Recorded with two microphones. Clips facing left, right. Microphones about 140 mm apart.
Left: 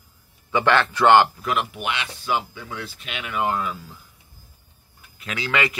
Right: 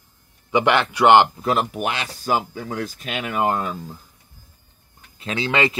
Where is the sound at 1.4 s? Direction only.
35° right (ahead or behind).